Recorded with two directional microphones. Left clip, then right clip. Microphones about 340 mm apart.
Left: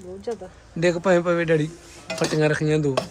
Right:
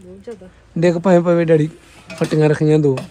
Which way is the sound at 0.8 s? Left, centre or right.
Centre.